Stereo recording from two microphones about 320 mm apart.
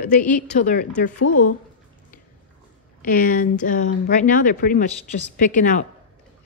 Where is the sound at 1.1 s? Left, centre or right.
Left.